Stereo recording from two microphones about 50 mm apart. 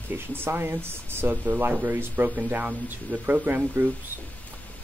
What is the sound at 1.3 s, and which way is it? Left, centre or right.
Speech, right.